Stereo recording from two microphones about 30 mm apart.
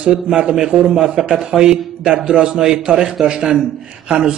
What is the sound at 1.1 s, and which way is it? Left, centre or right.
A man's voice, right.